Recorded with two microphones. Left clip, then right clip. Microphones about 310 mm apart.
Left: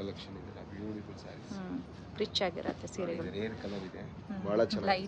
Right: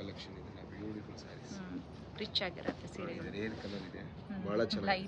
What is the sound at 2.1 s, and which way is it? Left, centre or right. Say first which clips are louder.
Speech: left 5 dB; centre.